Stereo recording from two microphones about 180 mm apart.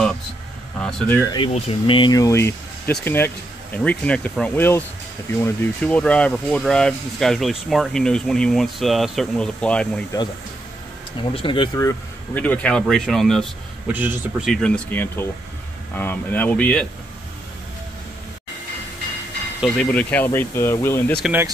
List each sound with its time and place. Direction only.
0.7 s speech: 5° left (ahead or behind)
1.5 s speech: 30° left (ahead or behind); by 10.0 s 5° left (ahead or behind)
11.3 s speech: 30° left (ahead or behind)
12.4 s speech: 5° left (ahead or behind)
13.9 s speech: 10° right (ahead or behind)
14.5 s speech: 5° left (ahead or behind)
19.6 s speech: 5° left (ahead or behind)
21.2 s speech: 10° right (ahead or behind)